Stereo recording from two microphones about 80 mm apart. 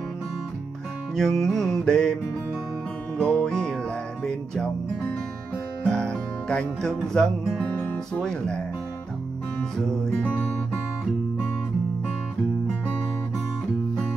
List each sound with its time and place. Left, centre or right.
1.1 s music: centre
3.2 s music: centre
5.9 s music: centre
7.7 s music: centre
9.8 s music: centre